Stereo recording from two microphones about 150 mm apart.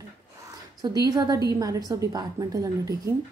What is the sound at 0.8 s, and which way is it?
A woman's voice, 25° right (ahead or behind).